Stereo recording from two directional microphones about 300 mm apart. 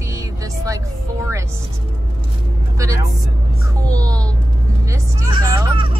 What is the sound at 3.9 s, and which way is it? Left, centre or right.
A woman's voice, centre.